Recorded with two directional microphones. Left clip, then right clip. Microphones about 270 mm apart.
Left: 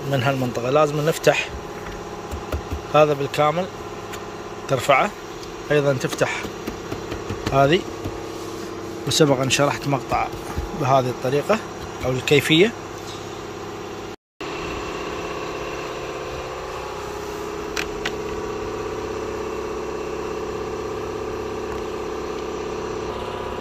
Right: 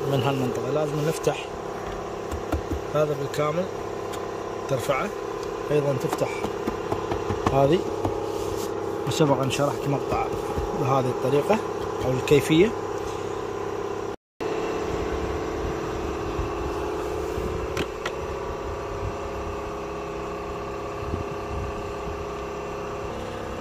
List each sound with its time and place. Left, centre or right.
0.2 s a man's voice: centre
3.0 s a man's voice: centre
4.6 s a man's voice: centre
7.5 s a man's voice: centre
9.2 s speech: centre
10.9 s a man's voice: centre